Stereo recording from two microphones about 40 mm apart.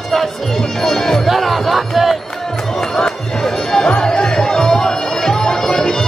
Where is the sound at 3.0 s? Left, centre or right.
Centre.